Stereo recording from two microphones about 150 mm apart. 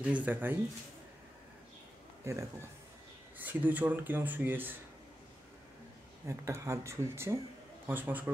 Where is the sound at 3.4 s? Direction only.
10° right (ahead or behind).